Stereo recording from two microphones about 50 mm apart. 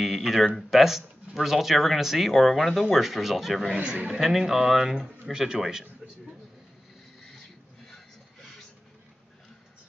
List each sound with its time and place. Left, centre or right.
0.0 s a sound: centre
0.6 s speech: centre
3.7 s a man's voice: right
4.1 s a man's voice: centre